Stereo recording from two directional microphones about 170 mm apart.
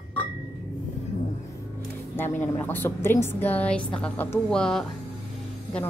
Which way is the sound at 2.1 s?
15° left (ahead or behind).